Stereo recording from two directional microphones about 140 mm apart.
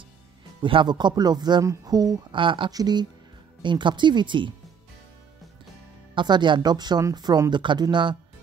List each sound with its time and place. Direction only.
0.6 s speech: 35° right (ahead or behind)
6.1 s speech: 35° right (ahead or behind)